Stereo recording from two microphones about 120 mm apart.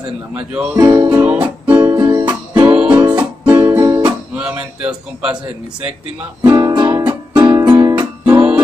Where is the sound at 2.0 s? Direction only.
40° right (ahead or behind).